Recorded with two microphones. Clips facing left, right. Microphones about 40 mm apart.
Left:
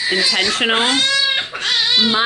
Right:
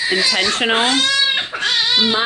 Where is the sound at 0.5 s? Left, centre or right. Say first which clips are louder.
Even; centre.